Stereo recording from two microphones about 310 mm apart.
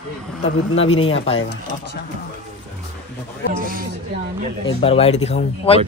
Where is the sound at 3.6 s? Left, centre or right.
Right.